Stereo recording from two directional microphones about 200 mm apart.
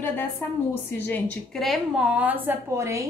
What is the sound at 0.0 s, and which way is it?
A woman's voice, 10° left (ahead or behind).